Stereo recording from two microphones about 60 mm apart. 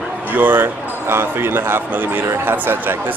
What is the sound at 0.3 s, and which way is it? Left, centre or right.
Speech, right.